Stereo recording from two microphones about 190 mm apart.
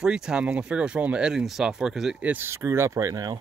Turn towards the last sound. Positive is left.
turn(degrees=-20)  # may be behind; listen again after turning